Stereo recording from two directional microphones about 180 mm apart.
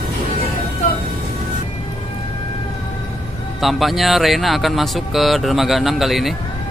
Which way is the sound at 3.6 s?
Centre (ahead or behind).